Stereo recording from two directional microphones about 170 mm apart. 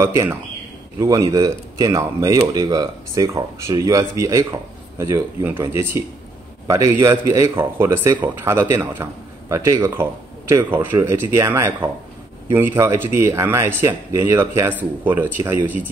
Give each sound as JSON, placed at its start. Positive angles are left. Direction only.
{"t": 0.0, "sound": "speech", "side_deg": -15}